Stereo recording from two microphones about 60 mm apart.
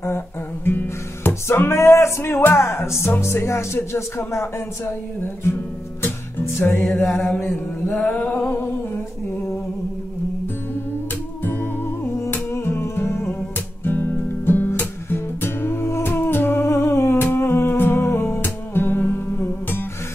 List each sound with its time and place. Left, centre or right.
0.7 s music: left
6.6 s a sound: left
11.4 s music: left